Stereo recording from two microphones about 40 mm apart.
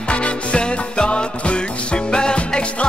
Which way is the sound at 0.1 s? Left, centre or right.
Left.